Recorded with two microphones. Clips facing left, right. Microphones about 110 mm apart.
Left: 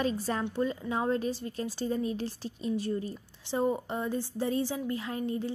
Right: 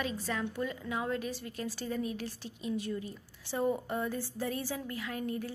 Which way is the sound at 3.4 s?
20° left (ahead or behind).